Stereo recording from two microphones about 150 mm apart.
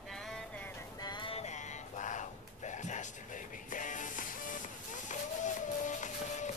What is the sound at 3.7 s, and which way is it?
Music, 60° left (ahead or behind).